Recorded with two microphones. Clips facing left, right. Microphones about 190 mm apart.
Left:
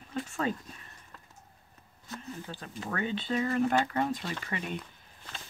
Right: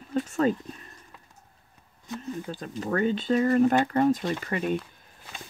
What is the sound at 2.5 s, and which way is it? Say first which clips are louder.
Speech: right 8 dB; 40° right (ahead or behind).